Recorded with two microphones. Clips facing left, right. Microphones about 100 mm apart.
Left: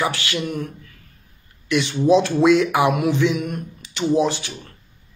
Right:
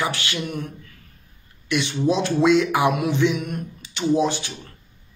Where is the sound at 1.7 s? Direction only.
40° left (ahead or behind).